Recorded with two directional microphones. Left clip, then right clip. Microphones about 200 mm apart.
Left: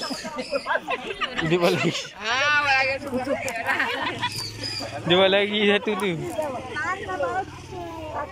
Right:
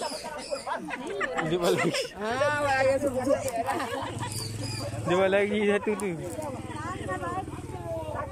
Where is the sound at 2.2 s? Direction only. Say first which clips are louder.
Left 6 dB; 40° right (ahead or behind).